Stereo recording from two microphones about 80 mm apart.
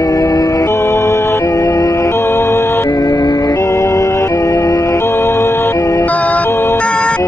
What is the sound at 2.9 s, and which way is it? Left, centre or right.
Music, left.